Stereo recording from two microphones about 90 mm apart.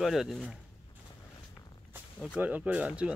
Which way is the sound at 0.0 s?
Centre (ahead or behind).